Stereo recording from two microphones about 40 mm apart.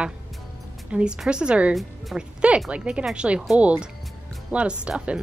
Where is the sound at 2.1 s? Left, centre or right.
Centre.